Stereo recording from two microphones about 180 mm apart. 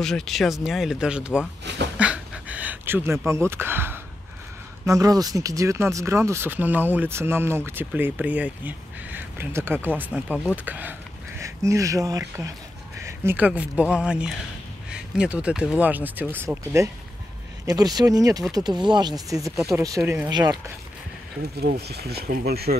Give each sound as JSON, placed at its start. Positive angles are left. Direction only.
{"t": 0.0, "sound": "speech", "side_deg": 0}
{"t": 2.0, "sound": "a sound", "side_deg": -5}
{"t": 4.8, "sound": "speech", "side_deg": -20}
{"t": 21.8, "sound": "speech", "side_deg": -65}